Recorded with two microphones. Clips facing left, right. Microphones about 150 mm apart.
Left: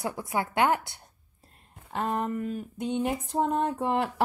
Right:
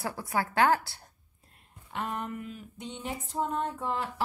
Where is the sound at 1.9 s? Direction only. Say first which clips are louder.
Left 6 dB; 35° left (ahead or behind).